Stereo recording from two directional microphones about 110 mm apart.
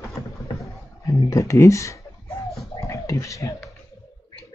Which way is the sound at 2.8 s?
30° left (ahead or behind).